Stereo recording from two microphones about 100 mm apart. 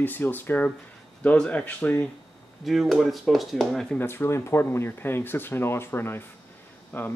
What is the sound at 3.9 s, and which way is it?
Speech, 25° left (ahead or behind).